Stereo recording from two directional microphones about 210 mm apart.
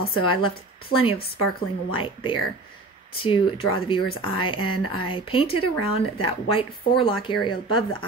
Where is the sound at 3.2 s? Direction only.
25° left (ahead or behind).